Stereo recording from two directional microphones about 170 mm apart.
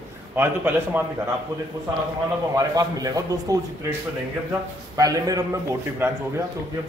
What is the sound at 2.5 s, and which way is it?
A man's voice, 20° right (ahead or behind).